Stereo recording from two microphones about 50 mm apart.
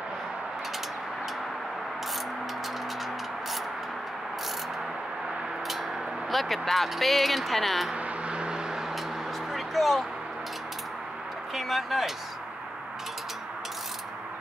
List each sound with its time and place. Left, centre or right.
6.3 s speech: centre
7.9 s vehicle: right
9.5 s a sound: centre
11.5 s speech: centre